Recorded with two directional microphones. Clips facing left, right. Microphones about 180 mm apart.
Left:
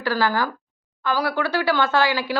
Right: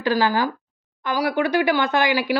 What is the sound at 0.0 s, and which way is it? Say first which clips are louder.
A woman's voice: right 2 dB; 15° right (ahead or behind).